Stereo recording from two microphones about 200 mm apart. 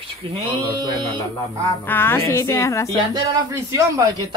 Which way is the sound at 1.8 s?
10° left (ahead or behind).